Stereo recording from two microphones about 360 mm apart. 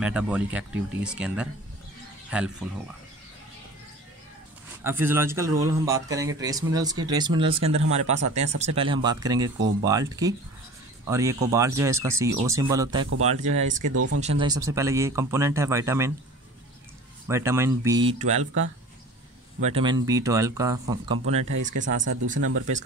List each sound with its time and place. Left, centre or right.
0.0 s speech: centre
4.8 s speech: centre
13.8 s speech: right
14.4 s speech: centre
17.3 s speech: centre
19.6 s speech: centre
22.4 s speech: right